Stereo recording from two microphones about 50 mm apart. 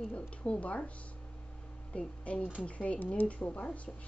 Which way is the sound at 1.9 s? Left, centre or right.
Left.